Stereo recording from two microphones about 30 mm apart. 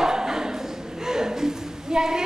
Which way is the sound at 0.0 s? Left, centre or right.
Centre.